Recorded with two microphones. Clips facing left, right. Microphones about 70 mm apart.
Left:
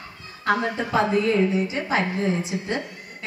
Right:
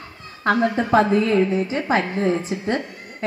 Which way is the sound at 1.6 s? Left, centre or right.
Right.